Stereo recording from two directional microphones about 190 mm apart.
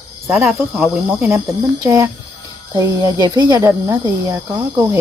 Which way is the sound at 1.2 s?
15° right (ahead or behind).